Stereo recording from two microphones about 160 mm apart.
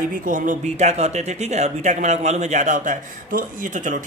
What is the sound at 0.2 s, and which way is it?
A man's voice, 55° right (ahead or behind).